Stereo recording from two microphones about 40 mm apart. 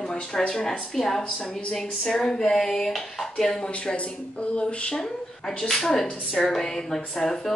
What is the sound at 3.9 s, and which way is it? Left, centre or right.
A woman's voice, left.